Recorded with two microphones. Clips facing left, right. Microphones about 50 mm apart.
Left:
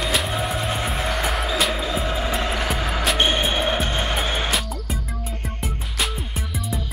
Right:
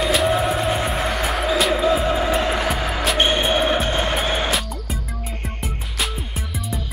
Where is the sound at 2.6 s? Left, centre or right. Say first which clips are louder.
Right 2 dB; centre.